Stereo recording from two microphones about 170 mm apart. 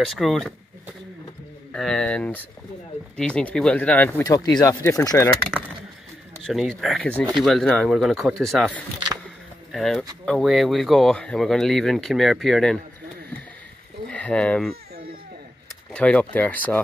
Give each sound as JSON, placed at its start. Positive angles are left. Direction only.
{"t": 0.0, "sound": "speech", "side_deg": 0}
{"t": 1.7, "sound": "speech", "side_deg": 5}
{"t": 4.2, "sound": "speech", "side_deg": 20}
{"t": 6.4, "sound": "speech", "side_deg": 0}
{"t": 14.0, "sound": "speech", "side_deg": 5}
{"t": 15.9, "sound": "speech", "side_deg": 5}